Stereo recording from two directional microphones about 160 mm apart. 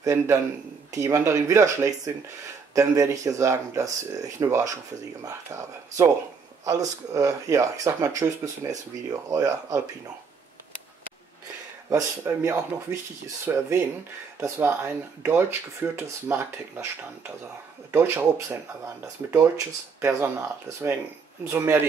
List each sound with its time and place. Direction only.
0.0 s speech: 20° right (ahead or behind)
11.9 s speech: 15° right (ahead or behind)
17.9 s speech: 15° right (ahead or behind)
20.0 s speech: 15° right (ahead or behind)